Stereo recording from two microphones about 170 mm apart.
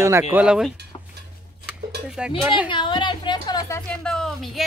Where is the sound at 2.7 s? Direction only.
30° left (ahead or behind).